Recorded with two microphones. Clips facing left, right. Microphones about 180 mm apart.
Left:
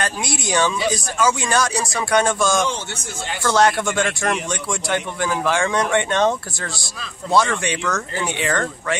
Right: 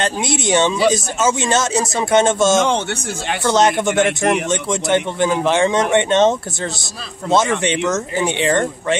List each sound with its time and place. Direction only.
0.0 s a man's voice: 25° right (ahead or behind)